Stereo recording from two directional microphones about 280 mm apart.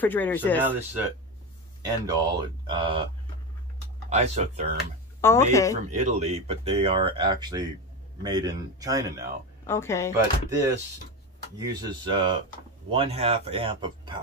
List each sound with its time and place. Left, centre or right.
0.0 s speech: centre
0.6 s speech: centre
4.1 s speech: right
5.2 s speech: centre
5.9 s speech: right
9.7 s speech: centre
10.1 s speech: centre